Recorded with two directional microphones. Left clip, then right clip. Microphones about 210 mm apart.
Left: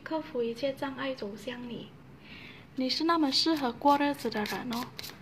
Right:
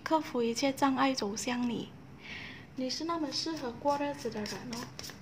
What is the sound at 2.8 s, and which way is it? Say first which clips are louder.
Speech: left 7 dB; 20° left (ahead or behind).